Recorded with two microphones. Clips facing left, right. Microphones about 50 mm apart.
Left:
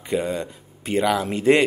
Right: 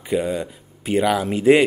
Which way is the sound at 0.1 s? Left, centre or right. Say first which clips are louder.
Right 2 dB; centre.